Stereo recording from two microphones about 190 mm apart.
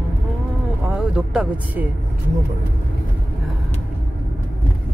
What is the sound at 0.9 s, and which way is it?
Speech, 5° right (ahead or behind).